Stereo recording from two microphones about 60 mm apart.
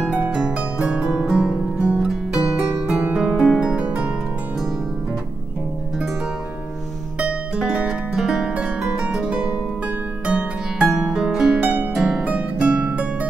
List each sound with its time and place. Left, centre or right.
0.4 s music: centre
2.0 s music: centre
2.7 s music: centre
7.5 s music: centre
8.8 s harp: centre
11.6 s harp: right
11.9 s harp: centre
12.3 s music: right